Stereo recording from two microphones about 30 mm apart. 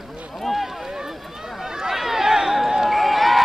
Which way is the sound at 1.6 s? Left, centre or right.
Centre.